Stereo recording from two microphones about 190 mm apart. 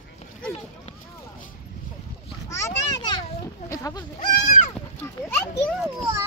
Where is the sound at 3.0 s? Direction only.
20° left (ahead or behind).